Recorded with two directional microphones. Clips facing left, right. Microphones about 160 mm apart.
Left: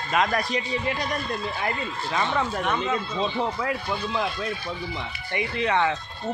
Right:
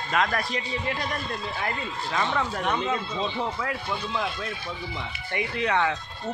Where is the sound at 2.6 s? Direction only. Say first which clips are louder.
Left 1 dB; 20° right (ahead or behind).